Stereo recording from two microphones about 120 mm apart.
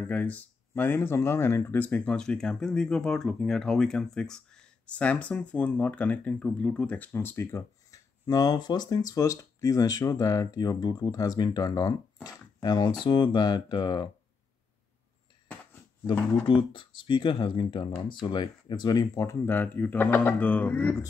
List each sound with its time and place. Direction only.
0.1 s speech: 15° left (ahead or behind); by 14.0 s 35° left (ahead or behind)
15.4 s a sound: 10° left (ahead or behind)
16.1 s speech: 45° left (ahead or behind); by 21.0 s 15° left (ahead or behind)